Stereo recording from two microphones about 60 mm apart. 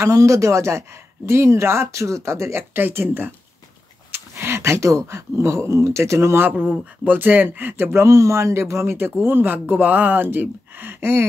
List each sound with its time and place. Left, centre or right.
0.1 s speech: right
2.7 s speech: right
6.4 s speech: right
8.1 s speech: right